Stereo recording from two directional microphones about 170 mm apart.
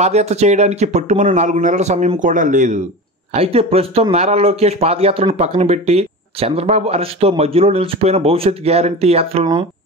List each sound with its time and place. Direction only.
0.0 s speech: 40° right (ahead or behind)
3.3 s speech: 35° right (ahead or behind)